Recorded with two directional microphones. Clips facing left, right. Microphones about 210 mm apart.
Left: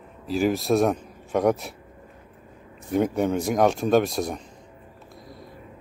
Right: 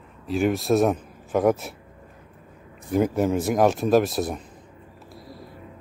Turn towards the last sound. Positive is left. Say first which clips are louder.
# right 1 dB
turn(degrees=0)  # may be behind; listen again after turning